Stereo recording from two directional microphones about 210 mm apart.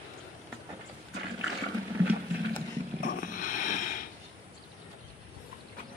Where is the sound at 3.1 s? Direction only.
40° left (ahead or behind).